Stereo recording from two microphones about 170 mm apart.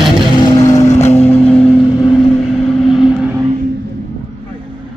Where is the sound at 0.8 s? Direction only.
40° left (ahead or behind).